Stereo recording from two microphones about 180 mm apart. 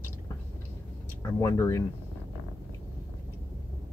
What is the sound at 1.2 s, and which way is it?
Speech, 15° left (ahead or behind).